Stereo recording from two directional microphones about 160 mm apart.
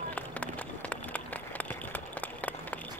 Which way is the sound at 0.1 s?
10° left (ahead or behind).